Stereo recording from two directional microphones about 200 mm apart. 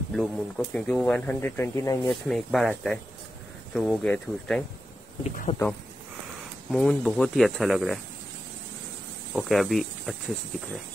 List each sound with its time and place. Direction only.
0.1 s speech: centre (ahead or behind)
2.0 s speech: centre (ahead or behind)
5.2 s speech: 35° left (ahead or behind)
6.7 s speech: centre (ahead or behind)
9.3 s speech: centre (ahead or behind)